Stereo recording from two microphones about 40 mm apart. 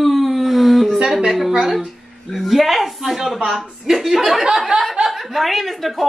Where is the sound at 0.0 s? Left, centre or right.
Centre.